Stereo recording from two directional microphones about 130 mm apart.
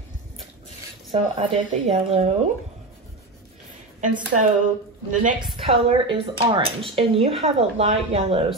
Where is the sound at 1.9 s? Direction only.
50° right (ahead or behind).